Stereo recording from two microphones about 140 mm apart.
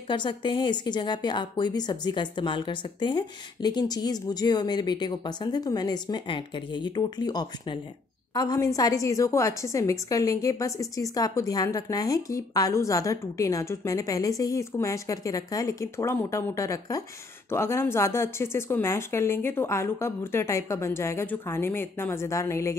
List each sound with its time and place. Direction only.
0.1 s a woman's voice: 35° left (ahead or behind)